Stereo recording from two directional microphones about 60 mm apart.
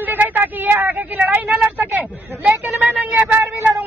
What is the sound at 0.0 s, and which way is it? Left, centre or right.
Speech, right.